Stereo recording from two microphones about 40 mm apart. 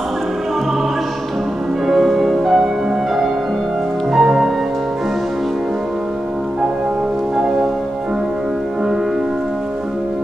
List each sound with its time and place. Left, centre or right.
1.9 s music: centre
4.1 s music: centre